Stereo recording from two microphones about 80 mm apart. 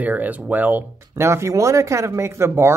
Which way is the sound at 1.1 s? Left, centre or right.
Right.